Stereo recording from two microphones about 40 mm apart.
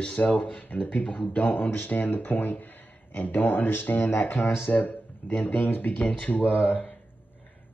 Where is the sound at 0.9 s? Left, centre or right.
Left.